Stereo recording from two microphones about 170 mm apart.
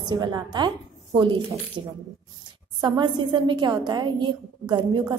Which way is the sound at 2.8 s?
25° right (ahead or behind).